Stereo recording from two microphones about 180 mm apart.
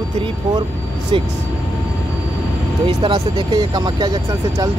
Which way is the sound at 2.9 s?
25° right (ahead or behind).